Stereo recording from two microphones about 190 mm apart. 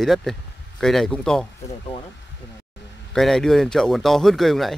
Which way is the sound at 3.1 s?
Centre (ahead or behind).